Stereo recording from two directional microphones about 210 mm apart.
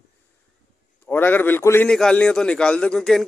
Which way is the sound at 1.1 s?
10° left (ahead or behind).